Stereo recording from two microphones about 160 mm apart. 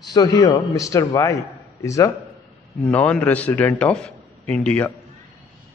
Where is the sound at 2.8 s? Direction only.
10° left (ahead or behind).